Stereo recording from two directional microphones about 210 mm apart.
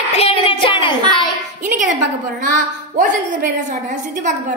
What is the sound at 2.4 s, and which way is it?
A woman's voice, 40° right (ahead or behind).